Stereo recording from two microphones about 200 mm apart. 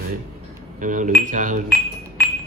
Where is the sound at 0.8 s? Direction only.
40° right (ahead or behind).